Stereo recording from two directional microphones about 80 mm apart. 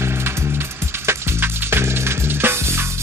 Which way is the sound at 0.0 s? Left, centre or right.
Right.